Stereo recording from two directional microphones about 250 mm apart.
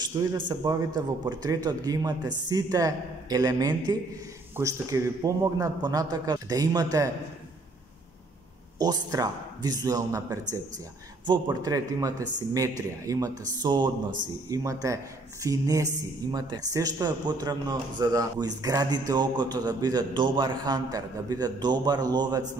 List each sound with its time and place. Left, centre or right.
0.0 s a woman's voice: centre
8.7 s a woman's voice: centre